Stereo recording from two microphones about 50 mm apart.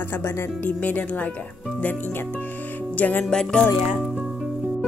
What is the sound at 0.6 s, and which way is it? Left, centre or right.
Speech, left.